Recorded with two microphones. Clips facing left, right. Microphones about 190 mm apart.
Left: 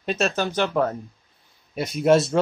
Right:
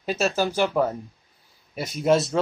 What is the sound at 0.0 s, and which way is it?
Speech, 5° right (ahead or behind).